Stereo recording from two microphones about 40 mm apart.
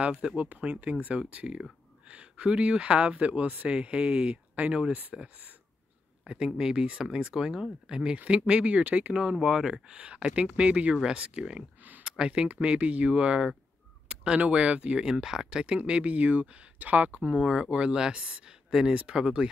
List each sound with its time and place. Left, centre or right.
0.4 s speech: right
5.1 s speech: centre; by 9.1 s right
9.1 s speech: right
15.0 s speech: centre
15.6 s speech: right
17.4 s speech: right
18.7 s speech: centre